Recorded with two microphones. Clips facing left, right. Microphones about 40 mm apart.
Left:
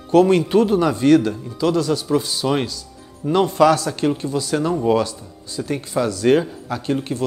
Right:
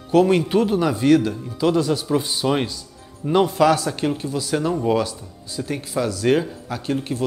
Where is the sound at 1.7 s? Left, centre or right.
Centre.